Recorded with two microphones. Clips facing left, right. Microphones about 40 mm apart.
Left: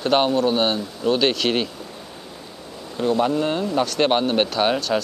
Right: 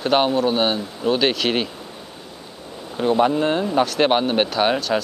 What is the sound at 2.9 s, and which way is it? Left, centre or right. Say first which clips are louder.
Speech: right 2 dB; centre.